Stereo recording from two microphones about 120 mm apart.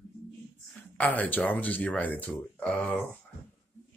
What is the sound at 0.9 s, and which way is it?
Speech, 15° left (ahead or behind).